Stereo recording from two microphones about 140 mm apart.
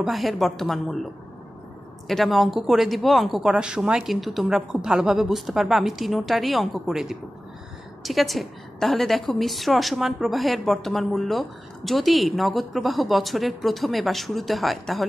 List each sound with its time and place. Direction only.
0.0 s a woman's voice: centre (ahead or behind)
2.0 s a woman's voice: centre (ahead or behind)